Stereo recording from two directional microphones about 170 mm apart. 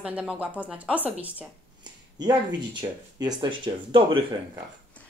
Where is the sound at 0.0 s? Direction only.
5° right (ahead or behind).